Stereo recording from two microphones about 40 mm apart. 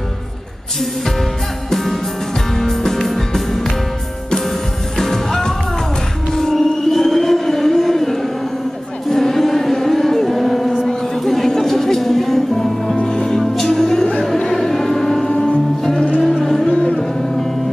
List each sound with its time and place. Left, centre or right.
1.7 s music: centre
4.9 s music: centre
6.3 s a sound: centre
9.1 s chant: centre
11.1 s music: centre
16.7 s a sound: left